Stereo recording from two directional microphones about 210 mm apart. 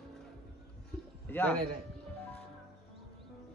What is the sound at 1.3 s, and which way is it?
Speech, 10° left (ahead or behind).